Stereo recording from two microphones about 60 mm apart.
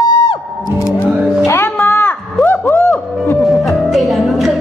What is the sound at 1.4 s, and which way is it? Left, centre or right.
Music, left.